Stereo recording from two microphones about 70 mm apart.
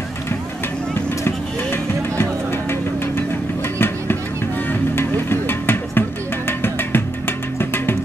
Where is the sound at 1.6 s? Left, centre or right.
Left.